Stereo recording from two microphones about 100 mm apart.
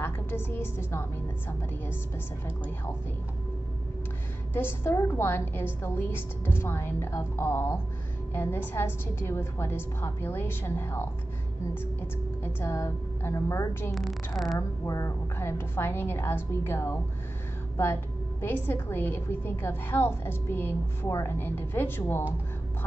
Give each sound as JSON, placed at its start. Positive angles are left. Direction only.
{"t": 0.0, "sound": "a woman's voice", "side_deg": 20}
{"t": 4.6, "sound": "a woman's voice", "side_deg": 25}
{"t": 12.4, "sound": "a woman's voice", "side_deg": 25}
{"t": 13.9, "sound": "a woman's voice", "side_deg": 0}
{"t": 14.6, "sound": "a woman's voice", "side_deg": 30}
{"t": 18.4, "sound": "a woman's voice", "side_deg": 25}